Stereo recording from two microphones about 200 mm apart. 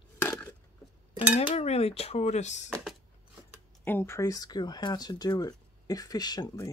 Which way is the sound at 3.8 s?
10° left (ahead or behind).